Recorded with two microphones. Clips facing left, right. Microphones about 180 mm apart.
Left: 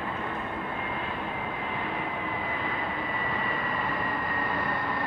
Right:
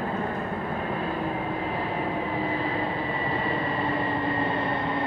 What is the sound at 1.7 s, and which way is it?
Vehicle, 35° right (ahead or behind).